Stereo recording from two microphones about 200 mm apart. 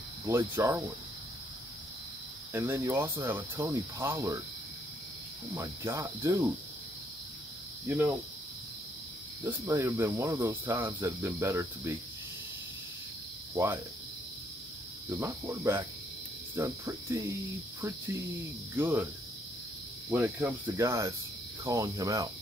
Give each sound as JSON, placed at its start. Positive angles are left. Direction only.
{"t": 0.3, "sound": "speech", "side_deg": -10}
{"t": 2.5, "sound": "speech", "side_deg": -10}
{"t": 5.5, "sound": "speech", "side_deg": -15}
{"t": 7.8, "sound": "speech", "side_deg": -10}
{"t": 9.4, "sound": "speech", "side_deg": -15}
{"t": 15.0, "sound": "speech", "side_deg": -10}
{"t": 18.8, "sound": "speech", "side_deg": -10}
{"t": 20.1, "sound": "speech", "side_deg": -10}